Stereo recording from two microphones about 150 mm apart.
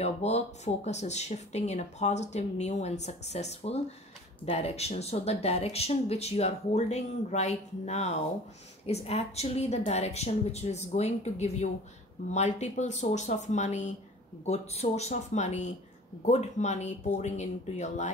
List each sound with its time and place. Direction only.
0.0 s speech: 45° left (ahead or behind)